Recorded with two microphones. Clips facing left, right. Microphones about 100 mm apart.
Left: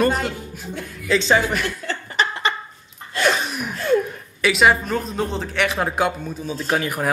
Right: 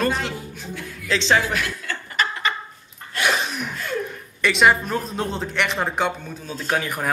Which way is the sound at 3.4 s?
5° left (ahead or behind).